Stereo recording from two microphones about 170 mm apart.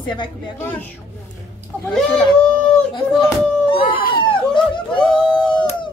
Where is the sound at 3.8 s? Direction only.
55° left (ahead or behind).